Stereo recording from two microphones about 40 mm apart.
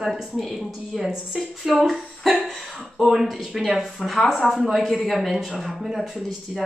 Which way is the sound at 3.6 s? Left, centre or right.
Centre.